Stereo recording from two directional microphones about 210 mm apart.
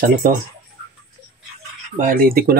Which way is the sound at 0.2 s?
40° right (ahead or behind).